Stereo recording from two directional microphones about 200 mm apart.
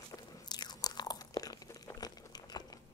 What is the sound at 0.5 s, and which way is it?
Crunch, 20° left (ahead or behind).